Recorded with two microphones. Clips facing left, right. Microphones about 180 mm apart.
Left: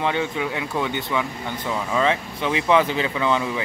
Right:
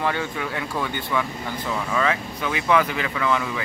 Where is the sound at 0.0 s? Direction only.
15° left (ahead or behind).